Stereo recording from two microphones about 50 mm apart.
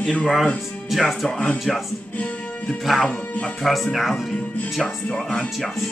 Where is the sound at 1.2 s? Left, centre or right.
Centre.